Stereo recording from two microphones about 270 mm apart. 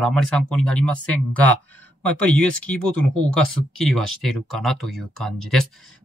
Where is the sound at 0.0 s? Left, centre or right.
Centre.